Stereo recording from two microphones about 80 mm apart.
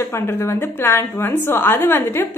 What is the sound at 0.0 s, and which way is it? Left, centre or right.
A woman's voice, left.